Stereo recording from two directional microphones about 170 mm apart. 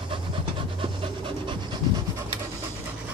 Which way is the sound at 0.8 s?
30° right (ahead or behind).